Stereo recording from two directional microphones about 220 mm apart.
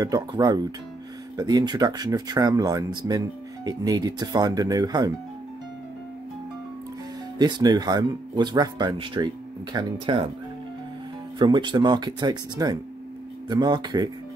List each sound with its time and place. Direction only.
0.0 s speech: 15° right (ahead or behind)
7.3 s speech: 20° right (ahead or behind)
11.3 s speech: 20° right (ahead or behind)